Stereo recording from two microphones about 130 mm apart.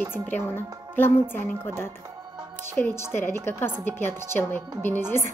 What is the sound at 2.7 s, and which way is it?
A woman's voice, 20° left (ahead or behind).